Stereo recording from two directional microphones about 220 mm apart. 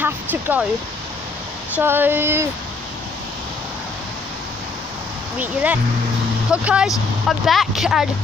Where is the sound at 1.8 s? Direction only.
10° right (ahead or behind).